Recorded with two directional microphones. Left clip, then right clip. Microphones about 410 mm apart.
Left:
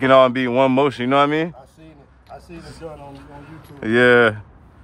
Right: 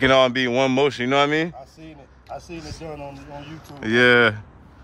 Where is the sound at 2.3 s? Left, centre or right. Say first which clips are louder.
Right 4 dB; right.